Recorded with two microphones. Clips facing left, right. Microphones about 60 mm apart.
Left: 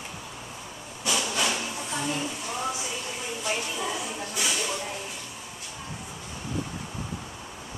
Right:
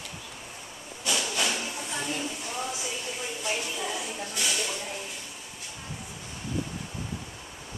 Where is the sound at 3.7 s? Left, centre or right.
Centre.